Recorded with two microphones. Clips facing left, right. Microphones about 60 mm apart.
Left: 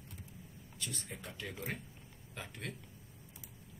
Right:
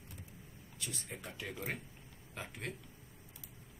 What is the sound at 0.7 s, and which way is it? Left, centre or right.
Speech, centre.